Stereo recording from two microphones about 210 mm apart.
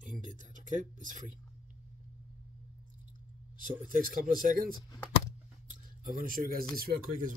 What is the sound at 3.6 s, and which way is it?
Speech, 40° right (ahead or behind).